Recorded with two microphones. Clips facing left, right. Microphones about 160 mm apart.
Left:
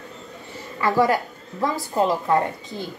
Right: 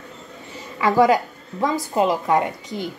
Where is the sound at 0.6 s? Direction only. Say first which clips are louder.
Right 3 dB; 15° right (ahead or behind).